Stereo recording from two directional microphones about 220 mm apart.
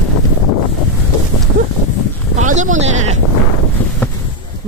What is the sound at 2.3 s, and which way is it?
Sheep, 35° right (ahead or behind).